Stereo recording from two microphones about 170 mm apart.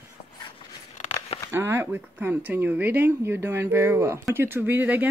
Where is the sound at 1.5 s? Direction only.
15° right (ahead or behind).